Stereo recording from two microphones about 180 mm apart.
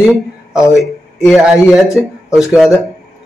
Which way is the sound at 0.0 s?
Centre (ahead or behind).